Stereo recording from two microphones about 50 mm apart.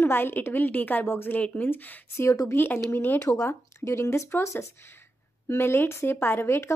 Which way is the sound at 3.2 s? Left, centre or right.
Left.